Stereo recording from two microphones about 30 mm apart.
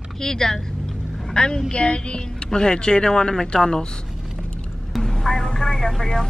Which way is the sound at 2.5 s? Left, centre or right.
Left.